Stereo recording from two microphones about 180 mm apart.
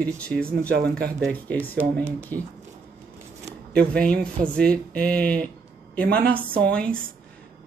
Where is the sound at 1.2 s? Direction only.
10° left (ahead or behind).